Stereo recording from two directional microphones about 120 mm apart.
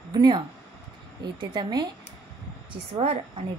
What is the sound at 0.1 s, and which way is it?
A woman's voice, 35° right (ahead or behind).